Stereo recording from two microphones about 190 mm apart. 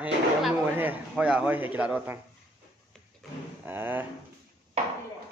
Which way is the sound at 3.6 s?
10° right (ahead or behind).